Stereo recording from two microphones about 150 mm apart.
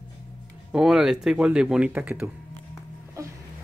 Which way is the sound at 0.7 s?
5° right (ahead or behind).